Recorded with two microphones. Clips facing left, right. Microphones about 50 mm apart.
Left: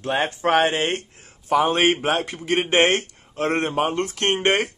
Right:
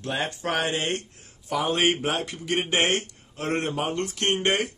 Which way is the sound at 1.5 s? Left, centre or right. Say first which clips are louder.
Left 5 dB; left.